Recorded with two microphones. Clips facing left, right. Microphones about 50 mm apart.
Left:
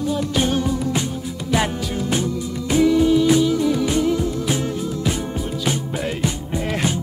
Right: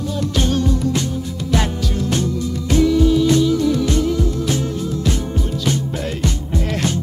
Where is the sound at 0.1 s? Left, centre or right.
Centre.